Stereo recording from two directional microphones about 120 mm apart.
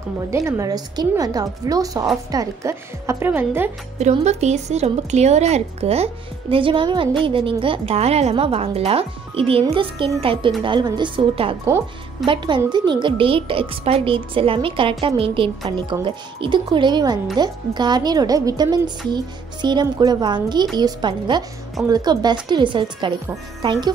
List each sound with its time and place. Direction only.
0.3 s a woman's voice: 25° right (ahead or behind)
4.2 s a woman's voice: 70° right (ahead or behind)
6.5 s a woman's voice: 45° right (ahead or behind)